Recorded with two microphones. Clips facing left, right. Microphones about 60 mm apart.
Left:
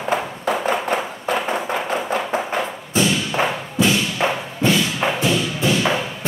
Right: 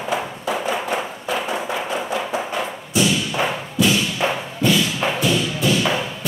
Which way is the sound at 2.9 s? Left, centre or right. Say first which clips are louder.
Even; left.